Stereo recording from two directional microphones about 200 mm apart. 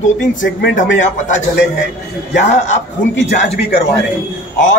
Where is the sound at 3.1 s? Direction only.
60° left (ahead or behind).